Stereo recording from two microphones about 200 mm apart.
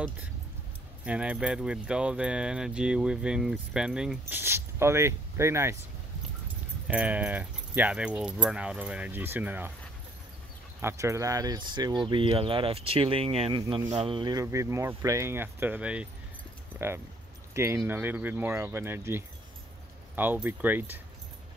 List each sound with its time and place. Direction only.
1.0 s speech: 5° right (ahead or behind)
6.9 s speech: 5° right (ahead or behind)
10.8 s speech: 15° right (ahead or behind)